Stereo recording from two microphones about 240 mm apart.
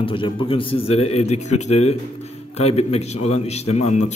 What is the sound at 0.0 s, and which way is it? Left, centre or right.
A man's voice, left.